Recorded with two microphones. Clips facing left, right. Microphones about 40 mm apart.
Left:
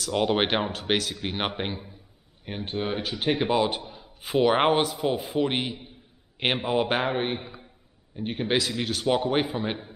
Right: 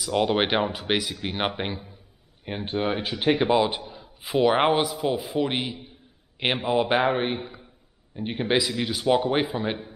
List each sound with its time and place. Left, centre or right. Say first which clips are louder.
0.0 s a man's voice: right 1 dB; centre
0.8 s speech: even; centre
1.1 s a man's voice: right 2 dB; centre
2.6 s speech: right 3 dB; centre
3.4 s a man's voice: right 2 dB; centre
7.0 s a man's voice: right 3 dB; centre